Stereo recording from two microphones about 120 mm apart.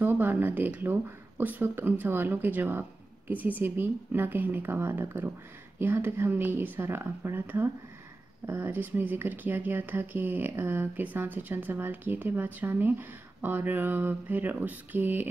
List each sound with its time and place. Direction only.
0.0 s speech: 15° right (ahead or behind)